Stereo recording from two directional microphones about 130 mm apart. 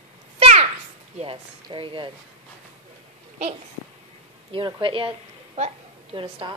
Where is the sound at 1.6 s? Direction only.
40° right (ahead or behind).